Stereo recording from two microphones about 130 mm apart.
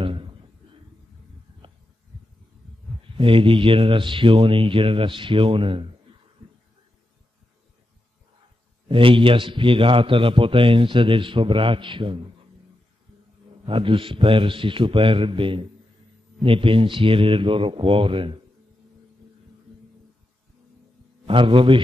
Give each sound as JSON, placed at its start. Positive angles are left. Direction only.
{"t": 0.0, "sound": "a sound", "side_deg": -40}
{"t": 3.2, "sound": "a man's voice", "side_deg": -45}
{"t": 8.8, "sound": "a man's voice", "side_deg": -45}
{"t": 13.7, "sound": "a man's voice", "side_deg": -40}
{"t": 21.3, "sound": "a man's voice", "side_deg": -40}